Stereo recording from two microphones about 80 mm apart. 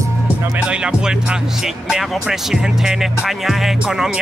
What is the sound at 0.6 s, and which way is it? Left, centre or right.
Speech, centre.